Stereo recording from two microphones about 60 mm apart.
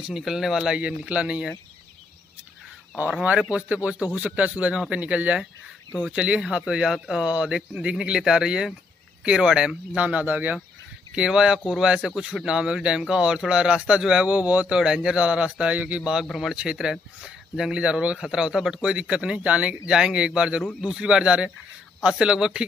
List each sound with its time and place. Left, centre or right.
0.0 s speech: centre
0.7 s a man's voice: right
3.0 s a man's voice: right
11.1 s speech: centre
16.0 s speech: centre